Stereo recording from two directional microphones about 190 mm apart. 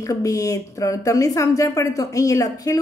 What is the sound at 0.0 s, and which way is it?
Speech, 15° left (ahead or behind).